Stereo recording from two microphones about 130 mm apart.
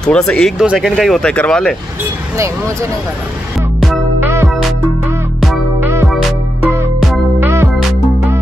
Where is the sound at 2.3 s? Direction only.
25° right (ahead or behind).